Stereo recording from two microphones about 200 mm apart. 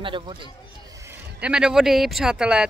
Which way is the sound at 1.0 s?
5° right (ahead or behind).